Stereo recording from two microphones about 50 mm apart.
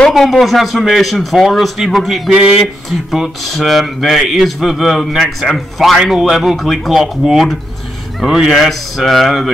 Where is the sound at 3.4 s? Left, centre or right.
Centre.